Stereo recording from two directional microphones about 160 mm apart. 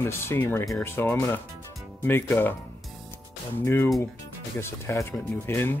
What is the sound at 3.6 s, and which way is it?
Speech, 15° left (ahead or behind).